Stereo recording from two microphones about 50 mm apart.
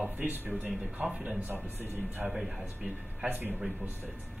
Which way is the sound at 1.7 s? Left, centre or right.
Right.